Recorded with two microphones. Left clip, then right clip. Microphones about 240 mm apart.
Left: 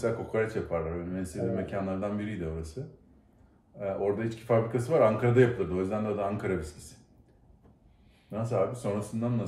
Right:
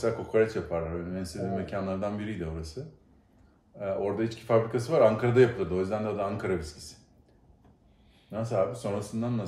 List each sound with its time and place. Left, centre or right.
0.0 s speech: centre
3.7 s speech: centre
8.3 s speech: centre